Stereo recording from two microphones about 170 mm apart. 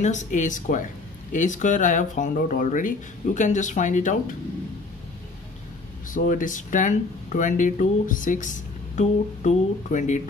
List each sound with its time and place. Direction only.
0.0 s speech: 45° left (ahead or behind)
6.1 s speech: 50° left (ahead or behind)